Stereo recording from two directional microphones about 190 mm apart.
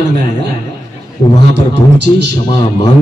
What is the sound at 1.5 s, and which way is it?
Speech, 65° right (ahead or behind).